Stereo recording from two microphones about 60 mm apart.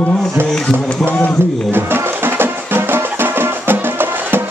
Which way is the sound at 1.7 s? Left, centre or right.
Right.